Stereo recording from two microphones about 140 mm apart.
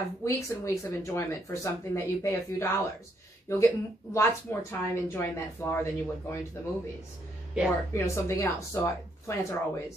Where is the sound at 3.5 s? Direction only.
20° left (ahead or behind).